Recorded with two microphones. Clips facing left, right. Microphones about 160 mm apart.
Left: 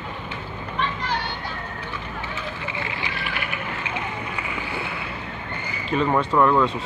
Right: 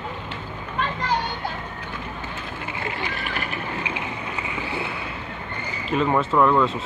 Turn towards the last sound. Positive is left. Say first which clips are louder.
# even
turn(degrees=0)  # may be behind; listen again after turning